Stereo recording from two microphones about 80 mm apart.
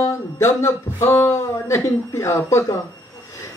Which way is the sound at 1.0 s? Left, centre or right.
Left.